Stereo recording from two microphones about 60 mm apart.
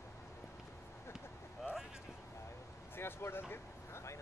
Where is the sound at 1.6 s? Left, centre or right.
Left.